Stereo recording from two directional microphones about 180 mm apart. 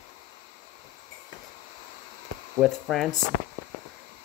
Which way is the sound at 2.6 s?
Centre (ahead or behind).